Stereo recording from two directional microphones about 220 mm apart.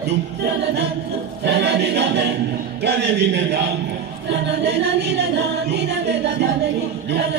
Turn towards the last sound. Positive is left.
turn(degrees=-50)  # may be behind; listen again after turning